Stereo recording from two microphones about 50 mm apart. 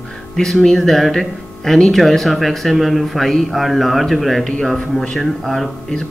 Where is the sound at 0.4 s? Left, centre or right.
Centre.